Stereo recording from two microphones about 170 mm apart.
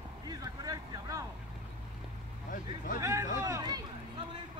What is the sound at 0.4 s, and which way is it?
Vehicle, 20° right (ahead or behind).